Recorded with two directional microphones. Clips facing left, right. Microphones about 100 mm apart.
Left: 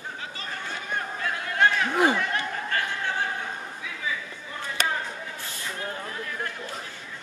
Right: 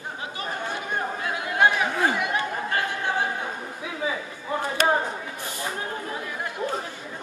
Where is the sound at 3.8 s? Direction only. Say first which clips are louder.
Right 7 dB; 35° right (ahead or behind).